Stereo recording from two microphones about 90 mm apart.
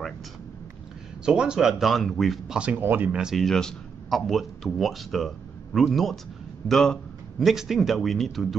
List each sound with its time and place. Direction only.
1.2 s a man's voice: 10° right (ahead or behind)
2.8 s speech: 20° right (ahead or behind)
3.3 s a man's voice: 5° left (ahead or behind)